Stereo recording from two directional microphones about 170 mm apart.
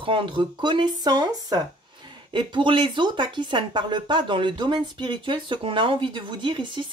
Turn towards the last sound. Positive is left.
turn(degrees=-30)  # may be behind; listen again after turning